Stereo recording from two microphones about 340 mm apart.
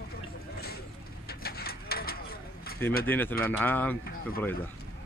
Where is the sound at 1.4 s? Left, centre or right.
Left.